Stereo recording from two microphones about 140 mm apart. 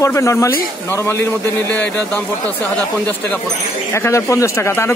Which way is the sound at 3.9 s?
20° left (ahead or behind).